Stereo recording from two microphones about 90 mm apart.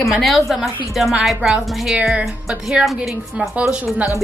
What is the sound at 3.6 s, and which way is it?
Speech, 15° right (ahead or behind).